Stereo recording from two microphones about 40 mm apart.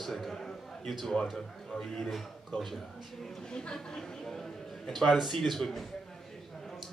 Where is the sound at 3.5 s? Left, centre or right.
Centre.